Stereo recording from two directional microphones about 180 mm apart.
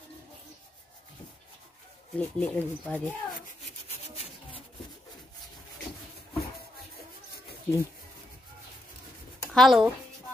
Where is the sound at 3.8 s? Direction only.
35° left (ahead or behind).